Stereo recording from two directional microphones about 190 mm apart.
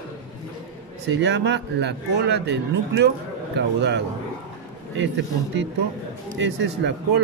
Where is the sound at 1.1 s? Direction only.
65° right (ahead or behind).